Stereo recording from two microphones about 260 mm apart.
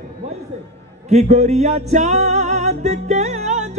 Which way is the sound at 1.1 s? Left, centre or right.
Right.